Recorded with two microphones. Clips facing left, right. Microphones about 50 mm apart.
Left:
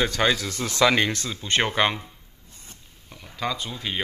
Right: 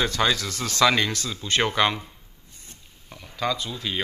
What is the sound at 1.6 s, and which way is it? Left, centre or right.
Speech, centre.